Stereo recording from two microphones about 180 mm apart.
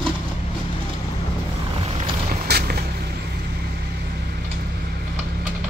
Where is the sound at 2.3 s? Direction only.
60° right (ahead or behind).